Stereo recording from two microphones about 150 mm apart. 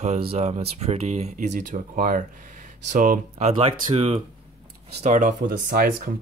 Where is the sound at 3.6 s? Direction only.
40° right (ahead or behind).